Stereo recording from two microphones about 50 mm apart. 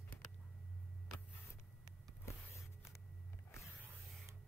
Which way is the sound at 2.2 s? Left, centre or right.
Left.